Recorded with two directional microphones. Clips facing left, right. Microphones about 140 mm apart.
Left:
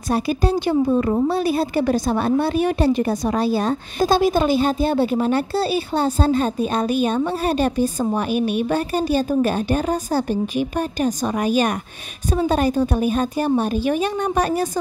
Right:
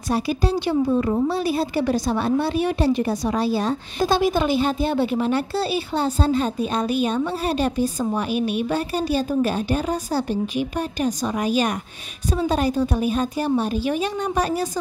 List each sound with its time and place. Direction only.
0.1 s a woman's voice: 50° left (ahead or behind)